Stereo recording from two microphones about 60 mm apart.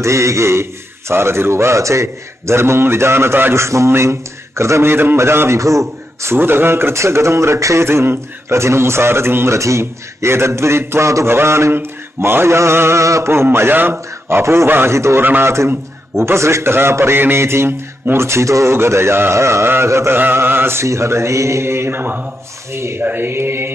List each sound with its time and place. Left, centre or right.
0.0 s speech: right
3.5 s speech: right
5.6 s a man's voice: right
6.3 s speech: right
13.3 s a man's voice: right
14.4 s speech: right
15.2 s a man's voice: right
20.2 s speech: right
22.7 s speech: right
23.0 s a man's voice: right